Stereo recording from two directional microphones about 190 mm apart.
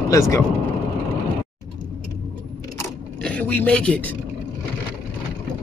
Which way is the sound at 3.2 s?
5° left (ahead or behind).